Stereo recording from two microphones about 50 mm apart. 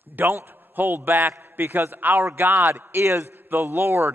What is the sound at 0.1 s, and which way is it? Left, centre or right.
A man's voice, right.